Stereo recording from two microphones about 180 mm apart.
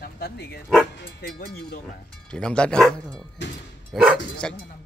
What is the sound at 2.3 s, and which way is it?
Speech, 5° left (ahead or behind).